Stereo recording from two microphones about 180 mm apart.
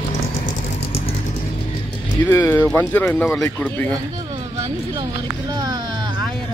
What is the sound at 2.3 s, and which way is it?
Speech, 15° left (ahead or behind).